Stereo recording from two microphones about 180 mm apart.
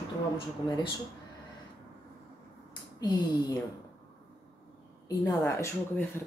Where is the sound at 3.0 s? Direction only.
20° left (ahead or behind).